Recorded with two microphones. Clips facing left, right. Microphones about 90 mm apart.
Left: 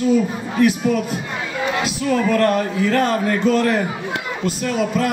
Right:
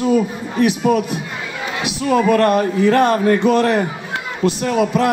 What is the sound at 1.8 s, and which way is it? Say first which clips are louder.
A man's voice: right 6 dB; 20° right (ahead or behind).